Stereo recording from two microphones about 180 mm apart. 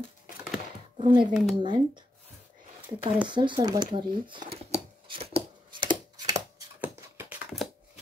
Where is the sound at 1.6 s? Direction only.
25° right (ahead or behind).